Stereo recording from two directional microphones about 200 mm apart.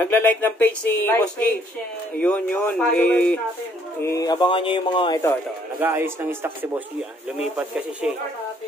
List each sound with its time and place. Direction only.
0.0 s speech: 10° left (ahead or behind)
4.0 s speech: 15° left (ahead or behind)
5.8 s speech: 10° right (ahead or behind)